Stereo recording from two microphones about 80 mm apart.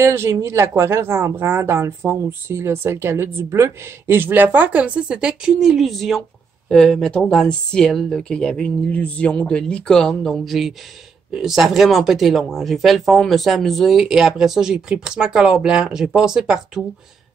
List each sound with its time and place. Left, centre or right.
0.0 s speech: right; by 16.8 s centre